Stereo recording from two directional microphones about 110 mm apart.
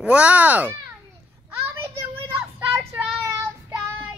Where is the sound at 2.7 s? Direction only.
25° right (ahead or behind).